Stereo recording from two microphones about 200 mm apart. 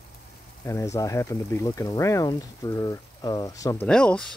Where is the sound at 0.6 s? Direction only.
15° left (ahead or behind).